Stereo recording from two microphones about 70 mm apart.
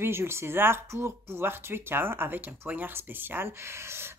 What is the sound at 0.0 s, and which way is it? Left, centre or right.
Speech, right.